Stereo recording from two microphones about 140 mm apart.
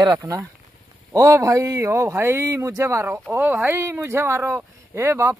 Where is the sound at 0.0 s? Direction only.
25° right (ahead or behind).